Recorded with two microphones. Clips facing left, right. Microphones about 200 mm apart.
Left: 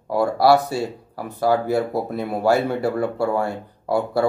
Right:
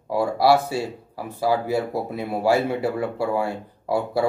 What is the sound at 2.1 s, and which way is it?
Speech, 5° right (ahead or behind).